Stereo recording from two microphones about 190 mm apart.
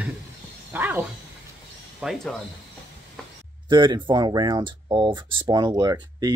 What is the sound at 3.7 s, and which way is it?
Speech, 25° right (ahead or behind).